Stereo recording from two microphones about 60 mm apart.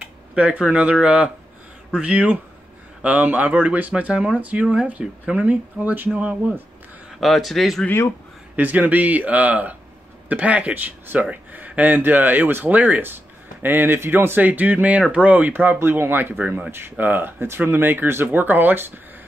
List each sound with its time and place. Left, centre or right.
0.3 s speech: centre
7.2 s speech: centre
8.5 s speech: right
15.8 s speech: right